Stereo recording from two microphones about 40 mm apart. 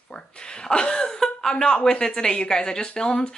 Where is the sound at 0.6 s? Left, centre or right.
Left.